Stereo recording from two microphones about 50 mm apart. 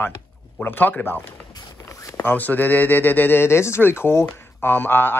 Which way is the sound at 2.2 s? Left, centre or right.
Left.